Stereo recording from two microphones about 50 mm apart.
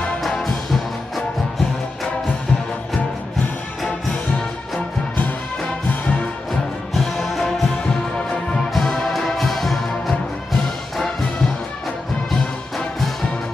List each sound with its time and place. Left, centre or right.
6.9 s music: centre
8.7 s music: centre
12.3 s music: centre